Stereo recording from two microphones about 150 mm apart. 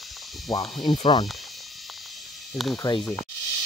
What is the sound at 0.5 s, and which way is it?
Speech, 25° left (ahead or behind).